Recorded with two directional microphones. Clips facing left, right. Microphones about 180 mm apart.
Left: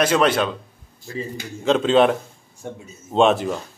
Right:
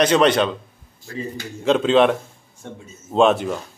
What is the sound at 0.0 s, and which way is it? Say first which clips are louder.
Speech: right 2 dB; 5° left (ahead or behind).